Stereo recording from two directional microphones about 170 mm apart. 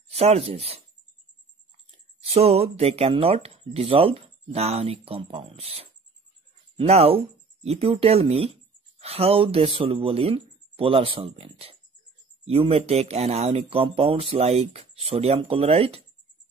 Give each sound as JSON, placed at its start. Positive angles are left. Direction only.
{"t": 0.1, "sound": "speech", "side_deg": -40}
{"t": 2.2, "sound": "speech", "side_deg": -35}